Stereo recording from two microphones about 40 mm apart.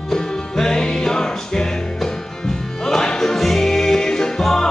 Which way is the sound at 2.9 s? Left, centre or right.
Centre.